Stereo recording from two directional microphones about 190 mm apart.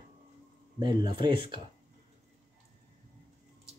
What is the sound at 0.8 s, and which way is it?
Cutlery, 25° right (ahead or behind).